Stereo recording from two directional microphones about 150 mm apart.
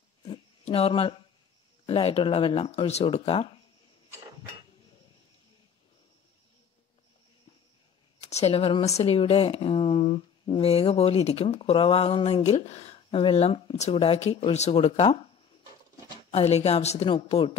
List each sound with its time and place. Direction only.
0.7 s speech: 40° left (ahead or behind)
8.3 s speech: 45° left (ahead or behind)
16.3 s a woman's voice: 45° left (ahead or behind)